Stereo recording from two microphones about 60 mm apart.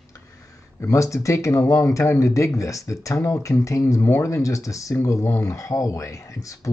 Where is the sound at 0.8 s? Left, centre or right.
Left.